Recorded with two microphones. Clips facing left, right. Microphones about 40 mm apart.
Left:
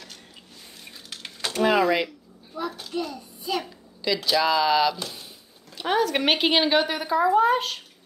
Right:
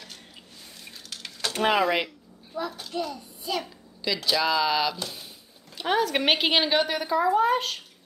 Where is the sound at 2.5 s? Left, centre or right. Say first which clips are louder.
Left 1 dB; centre.